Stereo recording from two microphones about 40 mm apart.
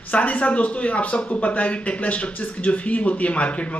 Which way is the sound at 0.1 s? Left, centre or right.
Left.